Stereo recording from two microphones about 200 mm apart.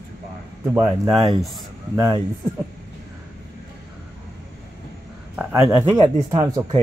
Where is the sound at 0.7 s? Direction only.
15° right (ahead or behind).